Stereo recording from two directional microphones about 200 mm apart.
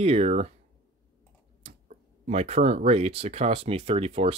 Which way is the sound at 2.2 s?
30° right (ahead or behind).